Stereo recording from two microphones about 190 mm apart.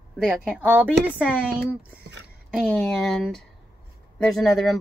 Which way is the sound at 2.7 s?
Centre (ahead or behind).